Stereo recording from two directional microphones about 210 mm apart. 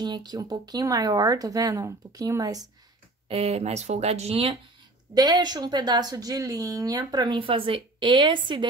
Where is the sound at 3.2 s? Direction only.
30° right (ahead or behind).